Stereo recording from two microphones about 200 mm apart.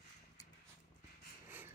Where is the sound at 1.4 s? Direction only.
10° right (ahead or behind).